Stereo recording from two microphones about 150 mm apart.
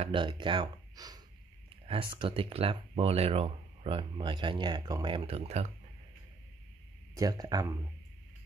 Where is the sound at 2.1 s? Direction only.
35° right (ahead or behind).